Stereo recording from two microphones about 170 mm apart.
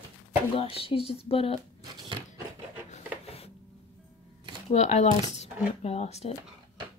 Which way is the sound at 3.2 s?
35° left (ahead or behind).